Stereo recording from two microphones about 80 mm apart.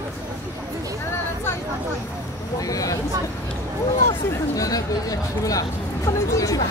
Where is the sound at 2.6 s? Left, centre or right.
Left.